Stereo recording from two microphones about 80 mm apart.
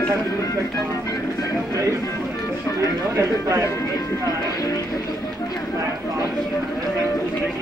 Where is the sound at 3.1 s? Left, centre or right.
Right.